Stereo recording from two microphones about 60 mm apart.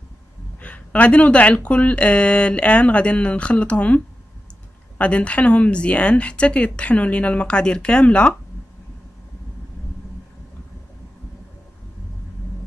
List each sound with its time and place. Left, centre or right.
0.6 s speech: left